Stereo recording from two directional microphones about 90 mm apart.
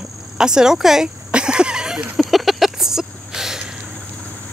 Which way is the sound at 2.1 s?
Centre (ahead or behind).